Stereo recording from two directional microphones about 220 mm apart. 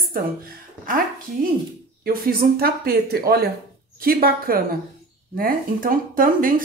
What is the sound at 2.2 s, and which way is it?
A woman's voice, 45° right (ahead or behind).